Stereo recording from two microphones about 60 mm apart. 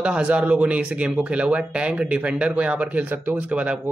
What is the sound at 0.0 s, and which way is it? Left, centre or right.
Speech, centre.